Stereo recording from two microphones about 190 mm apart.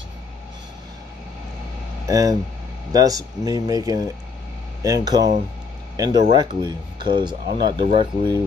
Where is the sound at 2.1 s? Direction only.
15° right (ahead or behind).